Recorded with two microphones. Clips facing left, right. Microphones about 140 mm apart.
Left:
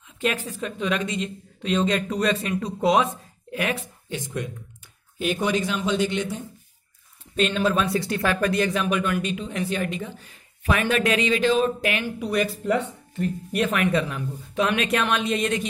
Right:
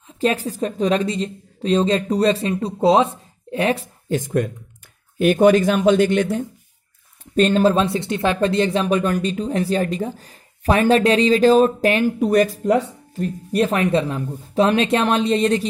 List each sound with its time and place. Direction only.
0.2 s speech: 35° right (ahead or behind); by 6.4 s 55° right (ahead or behind)
7.3 s speech: 40° right (ahead or behind)